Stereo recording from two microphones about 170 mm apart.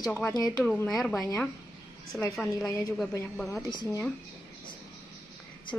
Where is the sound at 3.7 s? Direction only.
20° left (ahead or behind).